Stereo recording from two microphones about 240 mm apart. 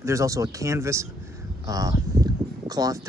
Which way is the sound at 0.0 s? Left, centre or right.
Centre.